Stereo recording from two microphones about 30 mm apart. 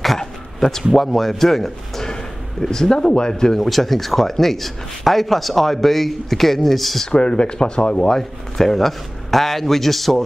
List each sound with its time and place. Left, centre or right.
0.2 s bow-wow: centre
1.0 s a man's voice: centre; by 3.5 s left
3.6 s speech: centre
7.1 s speech: left
8.2 s a man's voice: centre